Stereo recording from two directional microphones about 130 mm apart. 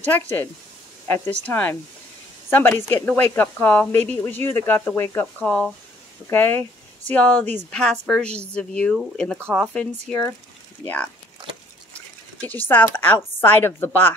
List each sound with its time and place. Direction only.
1.0 s speech: 15° left (ahead or behind)
12.4 s speech: 15° left (ahead or behind)